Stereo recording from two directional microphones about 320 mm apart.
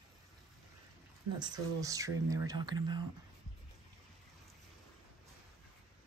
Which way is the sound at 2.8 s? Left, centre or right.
Right.